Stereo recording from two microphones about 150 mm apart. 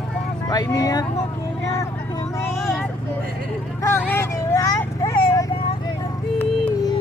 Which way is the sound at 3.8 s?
15° left (ahead or behind).